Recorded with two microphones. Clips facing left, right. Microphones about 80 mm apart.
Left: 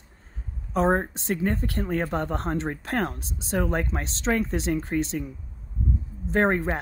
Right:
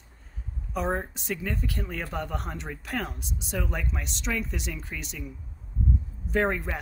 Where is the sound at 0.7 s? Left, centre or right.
Left.